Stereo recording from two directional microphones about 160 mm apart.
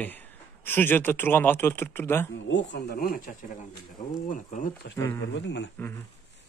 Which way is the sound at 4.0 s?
50° left (ahead or behind).